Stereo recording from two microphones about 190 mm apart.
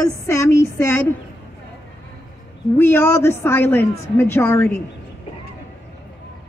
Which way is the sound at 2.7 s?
10° left (ahead or behind).